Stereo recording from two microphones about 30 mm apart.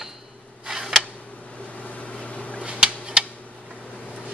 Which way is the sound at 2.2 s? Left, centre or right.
Left.